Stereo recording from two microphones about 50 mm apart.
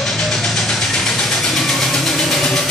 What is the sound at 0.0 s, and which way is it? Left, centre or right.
Vehicle, centre.